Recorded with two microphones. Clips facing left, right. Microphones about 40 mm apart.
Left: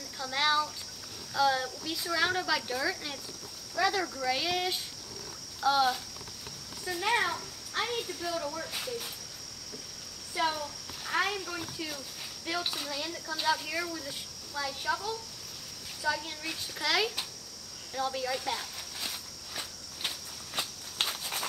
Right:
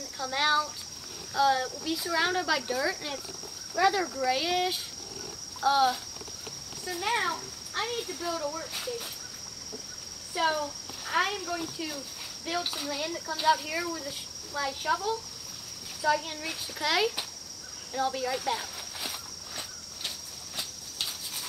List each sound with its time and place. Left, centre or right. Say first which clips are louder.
0.2 s speech: right 2 dB; centre
10.3 s speech: right 3 dB; centre
16.0 s speech: right 5 dB; centre
21.0 s insect: left 4 dB; left